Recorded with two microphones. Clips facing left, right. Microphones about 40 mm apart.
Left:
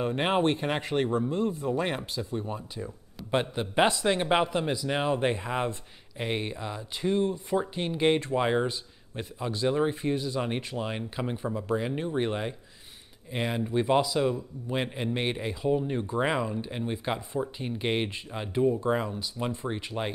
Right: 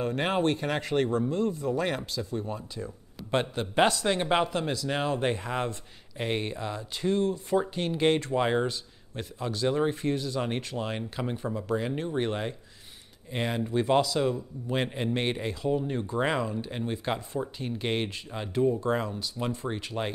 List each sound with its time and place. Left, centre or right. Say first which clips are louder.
0.0 s speech: left 1 dB; left
3.2 s a man's voice: even; centre
6.1 s a man's voice: right 1 dB; centre
7.5 s a man's voice: right 3 dB; centre